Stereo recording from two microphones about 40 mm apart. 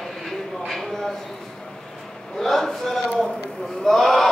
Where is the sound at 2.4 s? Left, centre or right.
Centre.